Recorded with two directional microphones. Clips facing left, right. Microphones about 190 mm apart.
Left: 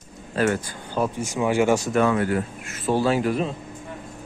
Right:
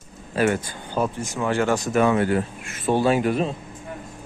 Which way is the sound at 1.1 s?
10° left (ahead or behind).